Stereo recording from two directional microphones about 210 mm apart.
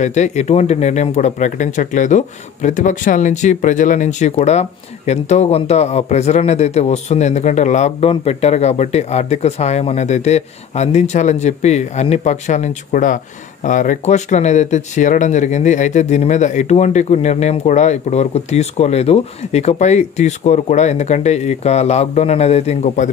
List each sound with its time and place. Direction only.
0.0 s speech: 35° left (ahead or behind)